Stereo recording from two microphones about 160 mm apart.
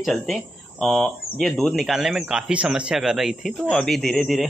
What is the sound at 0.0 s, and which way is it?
Speech, centre (ahead or behind).